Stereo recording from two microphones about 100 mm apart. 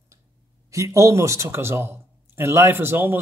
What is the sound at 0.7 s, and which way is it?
Speech, 30° right (ahead or behind).